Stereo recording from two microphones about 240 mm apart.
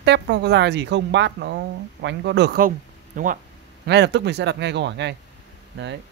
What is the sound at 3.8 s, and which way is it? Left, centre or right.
Speech, right.